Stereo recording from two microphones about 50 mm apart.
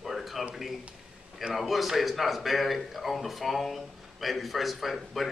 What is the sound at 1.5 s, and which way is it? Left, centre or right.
Speech, centre.